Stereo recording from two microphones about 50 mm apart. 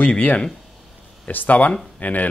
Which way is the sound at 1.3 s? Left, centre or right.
Left.